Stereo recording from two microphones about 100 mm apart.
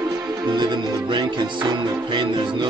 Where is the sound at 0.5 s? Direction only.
50° right (ahead or behind).